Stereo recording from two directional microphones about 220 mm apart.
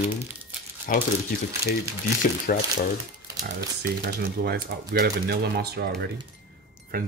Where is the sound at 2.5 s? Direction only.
40° left (ahead or behind).